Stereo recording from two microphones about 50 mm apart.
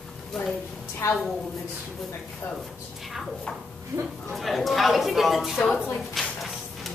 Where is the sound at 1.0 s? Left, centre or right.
Left.